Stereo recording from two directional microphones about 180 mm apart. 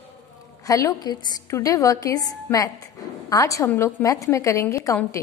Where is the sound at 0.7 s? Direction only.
20° left (ahead or behind).